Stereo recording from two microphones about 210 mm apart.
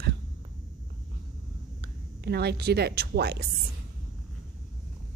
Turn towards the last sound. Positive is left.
turn(degrees=-50)  # may be behind; listen again after turning